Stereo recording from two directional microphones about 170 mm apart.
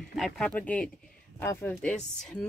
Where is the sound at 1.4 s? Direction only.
15° left (ahead or behind).